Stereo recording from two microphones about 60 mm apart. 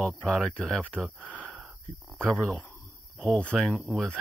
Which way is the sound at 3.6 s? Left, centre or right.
Centre.